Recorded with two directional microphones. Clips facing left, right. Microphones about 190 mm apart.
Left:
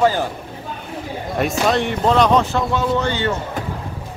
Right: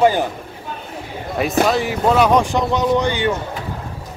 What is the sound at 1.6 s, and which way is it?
Speech, 5° right (ahead or behind).